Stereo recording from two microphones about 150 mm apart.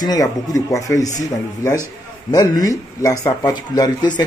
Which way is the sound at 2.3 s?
25° left (ahead or behind).